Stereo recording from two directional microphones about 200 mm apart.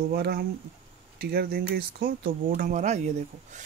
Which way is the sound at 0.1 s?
50° right (ahead or behind).